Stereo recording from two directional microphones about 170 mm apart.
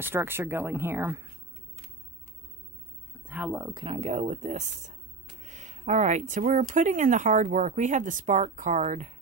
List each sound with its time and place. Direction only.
0.0 s speech: 15° right (ahead or behind)
3.3 s speech: 10° right (ahead or behind)
3.6 s speech: 30° right (ahead or behind)